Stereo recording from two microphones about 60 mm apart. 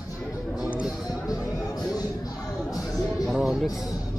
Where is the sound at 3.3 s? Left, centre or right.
Centre.